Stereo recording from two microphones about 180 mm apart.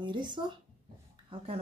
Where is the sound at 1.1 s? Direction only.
30° right (ahead or behind).